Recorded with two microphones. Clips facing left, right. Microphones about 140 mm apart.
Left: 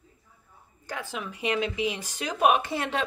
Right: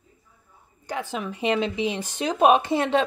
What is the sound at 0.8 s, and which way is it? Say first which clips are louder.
A woman's voice: right 5 dB; 20° right (ahead or behind).